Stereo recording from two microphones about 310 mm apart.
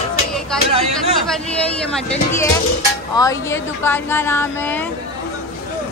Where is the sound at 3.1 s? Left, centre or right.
Centre.